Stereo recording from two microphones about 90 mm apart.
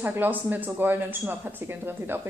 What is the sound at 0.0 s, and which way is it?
Speech, 20° right (ahead or behind).